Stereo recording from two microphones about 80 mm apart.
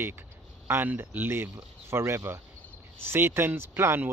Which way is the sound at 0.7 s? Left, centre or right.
Right.